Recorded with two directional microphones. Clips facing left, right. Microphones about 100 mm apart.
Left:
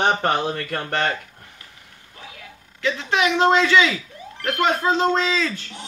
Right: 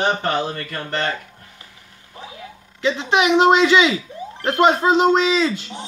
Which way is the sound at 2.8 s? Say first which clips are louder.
Right 3 dB; 20° right (ahead or behind).